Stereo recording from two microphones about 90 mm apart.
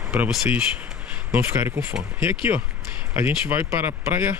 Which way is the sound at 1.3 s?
30° right (ahead or behind).